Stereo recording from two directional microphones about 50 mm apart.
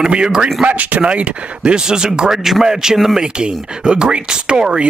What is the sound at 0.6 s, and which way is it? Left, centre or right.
Speech, right.